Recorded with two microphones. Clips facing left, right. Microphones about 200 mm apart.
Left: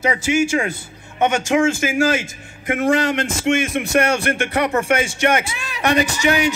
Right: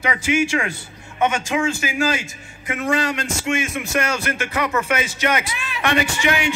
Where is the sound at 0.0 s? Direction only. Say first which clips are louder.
Left 2 dB; 40° left (ahead or behind).